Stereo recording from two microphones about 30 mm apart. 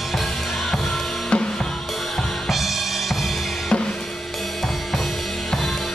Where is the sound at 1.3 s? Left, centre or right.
Left.